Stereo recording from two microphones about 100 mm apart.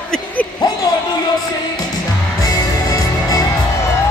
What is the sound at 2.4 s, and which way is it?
Music, 35° left (ahead or behind).